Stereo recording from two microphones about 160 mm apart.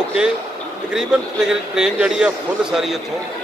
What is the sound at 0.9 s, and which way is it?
Speech, 5° right (ahead or behind).